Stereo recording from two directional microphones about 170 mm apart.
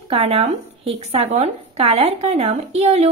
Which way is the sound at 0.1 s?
35° right (ahead or behind).